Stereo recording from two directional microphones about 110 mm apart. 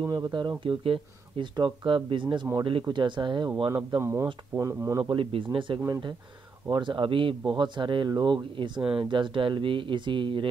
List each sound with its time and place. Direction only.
0.0 s speech: 35° right (ahead or behind)
5.1 s speech: 50° right (ahead or behind)